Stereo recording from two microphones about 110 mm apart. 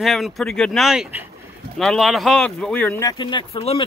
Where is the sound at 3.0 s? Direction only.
40° left (ahead or behind).